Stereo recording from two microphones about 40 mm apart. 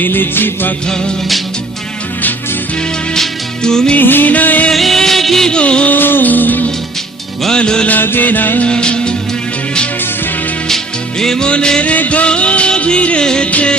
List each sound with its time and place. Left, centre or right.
0.0 s music: left
3.2 s music: centre
4.0 s music: left
4.7 s music: centre
5.5 s music: left
5.9 s music: left
7.5 s music: left
7.9 s music: left
8.6 s music: left
10.7 s music: centre
11.8 s music: left